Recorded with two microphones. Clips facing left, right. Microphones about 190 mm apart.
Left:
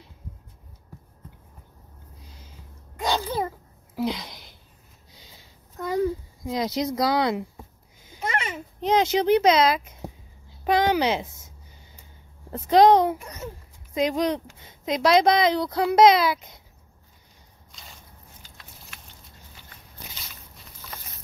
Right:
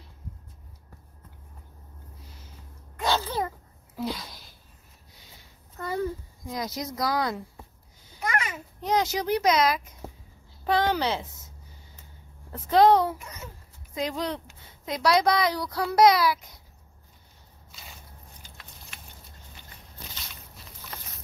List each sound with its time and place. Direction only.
3.0 s a sound: 15° left (ahead or behind)
6.4 s a woman's voice: 25° left (ahead or behind)
8.1 s a sound: 25° left (ahead or behind)
10.6 s a woman's voice: 15° left (ahead or behind)
12.5 s a woman's voice: 20° left (ahead or behind)
17.6 s squish: 5° right (ahead or behind)